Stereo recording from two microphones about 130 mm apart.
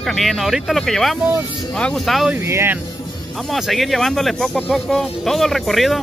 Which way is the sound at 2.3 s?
20° right (ahead or behind).